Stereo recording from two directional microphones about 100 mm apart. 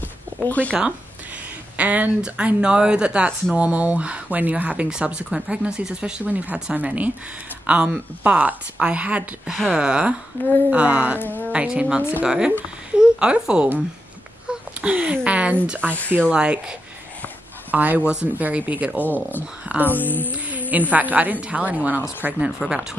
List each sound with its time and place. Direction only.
0.5 s speech: 15° left (ahead or behind)
1.8 s speech: 15° right (ahead or behind)
10.3 s speech: 20° left (ahead or behind)
10.7 s speech: 15° right (ahead or behind)
14.5 s a sound: 10° right (ahead or behind)
15.2 s speech: 15° right (ahead or behind)
19.9 s speech: 20° left (ahead or behind)
20.2 s a sound: 15° right (ahead or behind)
20.9 s speech: 15° right (ahead or behind)
22.6 s speech: 5° right (ahead or behind)